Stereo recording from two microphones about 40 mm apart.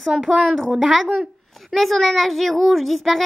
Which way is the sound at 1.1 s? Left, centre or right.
Centre.